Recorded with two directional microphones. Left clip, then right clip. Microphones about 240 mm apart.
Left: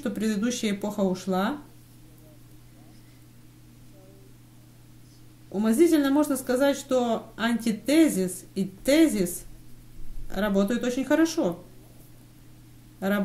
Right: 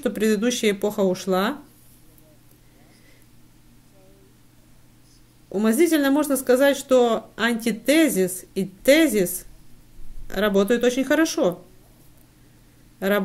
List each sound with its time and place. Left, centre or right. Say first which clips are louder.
0.0 s speech: right 8 dB; right
5.5 s speech: right 2 dB; right
10.3 s speech: right 6 dB; right
13.0 s speech: right 6 dB; right